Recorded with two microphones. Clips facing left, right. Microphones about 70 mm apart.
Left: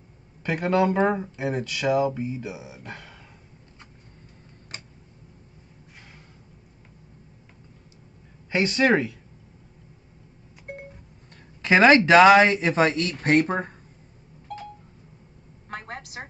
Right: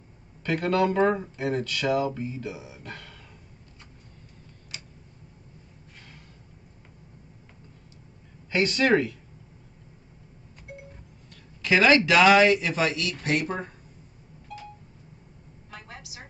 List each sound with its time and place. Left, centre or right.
0.4 s speech: centre
4.7 s tick: left
8.5 s speech: left
10.7 s cowbell: left
11.6 s speech: left
14.5 s a sound: left
15.7 s a sound: left